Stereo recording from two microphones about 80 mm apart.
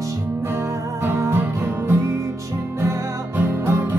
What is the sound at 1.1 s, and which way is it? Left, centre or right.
Music, right.